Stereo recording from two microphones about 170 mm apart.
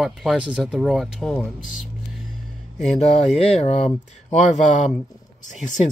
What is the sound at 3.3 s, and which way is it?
Speech, 40° left (ahead or behind).